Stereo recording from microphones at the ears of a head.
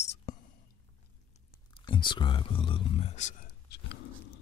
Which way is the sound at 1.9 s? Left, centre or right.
Left.